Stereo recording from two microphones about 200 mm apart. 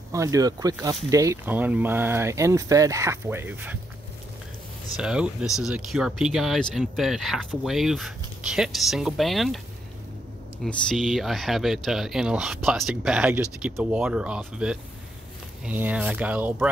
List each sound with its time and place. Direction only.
0.1 s speech: 15° right (ahead or behind)
4.9 s speech: 5° right (ahead or behind)
10.6 s speech: centre (ahead or behind)